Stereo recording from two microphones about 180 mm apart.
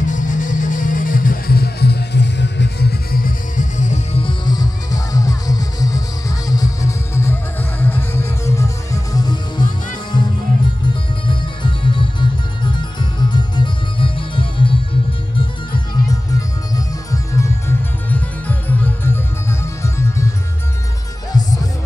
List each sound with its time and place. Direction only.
0.0 s music: 45° left (ahead or behind); by 9.7 s 25° left (ahead or behind)
11.2 s music: 25° left (ahead or behind); by 19.1 s 10° left (ahead or behind)
21.3 s music: 20° left (ahead or behind)